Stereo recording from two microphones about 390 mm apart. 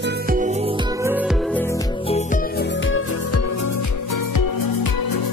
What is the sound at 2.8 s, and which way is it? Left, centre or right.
Music, left.